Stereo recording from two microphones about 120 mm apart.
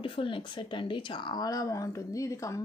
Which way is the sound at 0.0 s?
45° left (ahead or behind).